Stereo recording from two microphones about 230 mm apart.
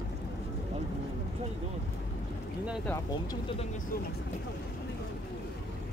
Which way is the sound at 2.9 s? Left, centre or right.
Centre.